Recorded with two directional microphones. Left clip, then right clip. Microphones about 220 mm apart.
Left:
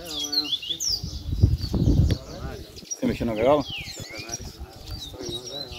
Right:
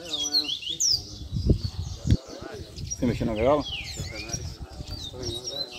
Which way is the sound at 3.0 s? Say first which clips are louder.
Left 2 dB; 10° left (ahead or behind).